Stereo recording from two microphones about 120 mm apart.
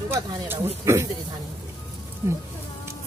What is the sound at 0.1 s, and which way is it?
Speech, 20° right (ahead or behind).